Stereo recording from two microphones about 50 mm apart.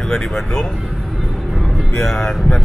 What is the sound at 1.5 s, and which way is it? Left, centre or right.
Music, centre.